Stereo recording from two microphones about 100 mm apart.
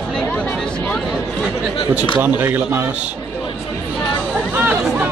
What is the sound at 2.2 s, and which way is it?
Speech, 20° right (ahead or behind).